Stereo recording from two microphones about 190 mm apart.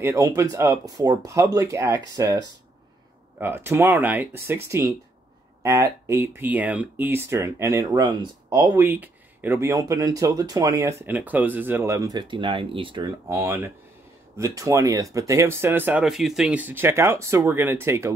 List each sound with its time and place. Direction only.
0.0 s speech: 15° right (ahead or behind)